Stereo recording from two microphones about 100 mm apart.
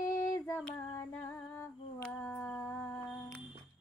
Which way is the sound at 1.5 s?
20° left (ahead or behind).